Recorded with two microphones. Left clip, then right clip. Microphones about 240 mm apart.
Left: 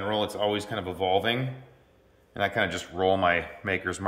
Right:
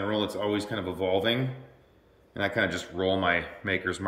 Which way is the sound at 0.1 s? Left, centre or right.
Centre.